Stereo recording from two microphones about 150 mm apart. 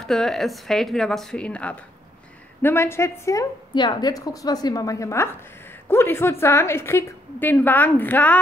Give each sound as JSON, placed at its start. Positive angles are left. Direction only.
{"t": 0.0, "sound": "a woman's voice", "side_deg": 5}